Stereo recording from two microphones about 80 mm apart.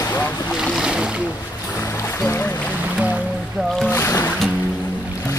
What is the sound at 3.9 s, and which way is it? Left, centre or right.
Speech, left.